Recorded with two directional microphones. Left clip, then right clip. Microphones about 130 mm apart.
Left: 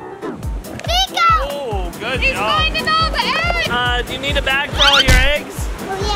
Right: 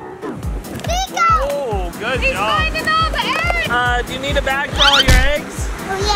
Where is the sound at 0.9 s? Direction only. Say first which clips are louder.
Left 2 dB; 60° left (ahead or behind).